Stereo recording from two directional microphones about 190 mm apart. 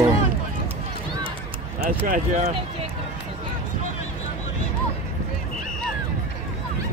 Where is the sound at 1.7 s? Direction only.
45° right (ahead or behind).